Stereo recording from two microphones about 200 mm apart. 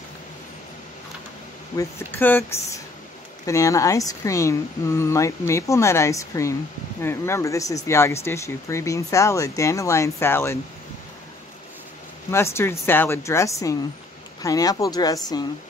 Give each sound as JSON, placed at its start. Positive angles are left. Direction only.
{"t": 1.8, "sound": "speech", "side_deg": 10}
{"t": 12.3, "sound": "speech", "side_deg": 15}